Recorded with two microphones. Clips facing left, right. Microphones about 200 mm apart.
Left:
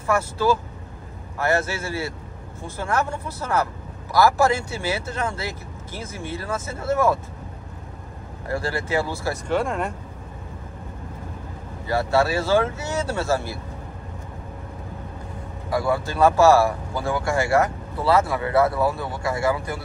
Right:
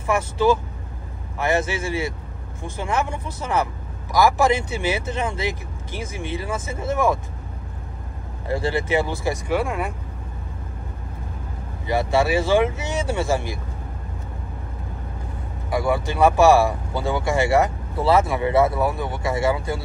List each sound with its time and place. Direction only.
0.0 s speech: 15° right (ahead or behind)
8.5 s speech: 20° right (ahead or behind)
11.8 s speech: 15° right (ahead or behind)
15.7 s speech: 15° right (ahead or behind)